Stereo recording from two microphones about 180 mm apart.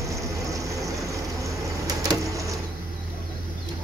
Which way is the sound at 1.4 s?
20° right (ahead or behind).